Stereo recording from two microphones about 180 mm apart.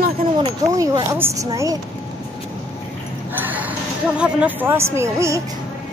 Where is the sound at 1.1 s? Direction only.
15° right (ahead or behind).